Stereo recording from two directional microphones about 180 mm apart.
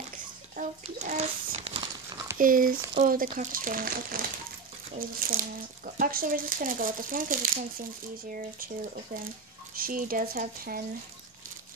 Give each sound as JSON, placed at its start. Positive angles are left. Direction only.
{"t": 0.6, "sound": "a child's voice", "side_deg": -40}
{"t": 2.3, "sound": "speech", "side_deg": -50}